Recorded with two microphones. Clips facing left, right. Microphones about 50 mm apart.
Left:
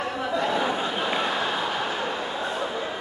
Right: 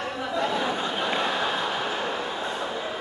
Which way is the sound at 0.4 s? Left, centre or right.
Centre.